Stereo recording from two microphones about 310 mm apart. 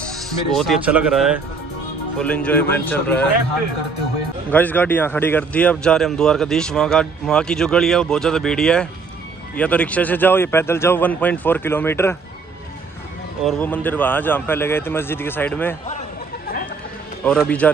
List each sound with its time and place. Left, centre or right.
0.6 s a man's voice: centre
4.5 s a man's voice: centre
13.4 s a man's voice: centre
17.2 s a man's voice: centre